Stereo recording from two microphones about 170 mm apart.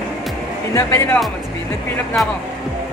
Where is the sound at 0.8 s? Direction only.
15° left (ahead or behind).